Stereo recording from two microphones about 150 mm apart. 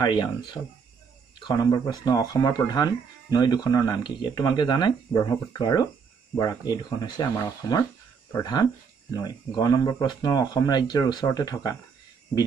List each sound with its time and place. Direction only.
0.0 s speech: 30° left (ahead or behind)